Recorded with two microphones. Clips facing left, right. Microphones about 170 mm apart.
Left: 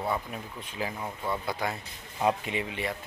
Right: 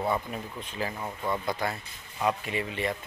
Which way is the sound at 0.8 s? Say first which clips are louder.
Even; 5° left (ahead or behind).